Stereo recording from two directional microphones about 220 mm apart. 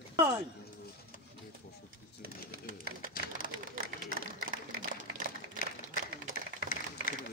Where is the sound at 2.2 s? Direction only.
40° right (ahead or behind).